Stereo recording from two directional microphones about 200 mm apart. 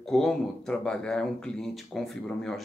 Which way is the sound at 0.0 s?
Centre (ahead or behind).